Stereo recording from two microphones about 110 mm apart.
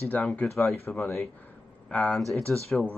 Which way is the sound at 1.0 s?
20° left (ahead or behind).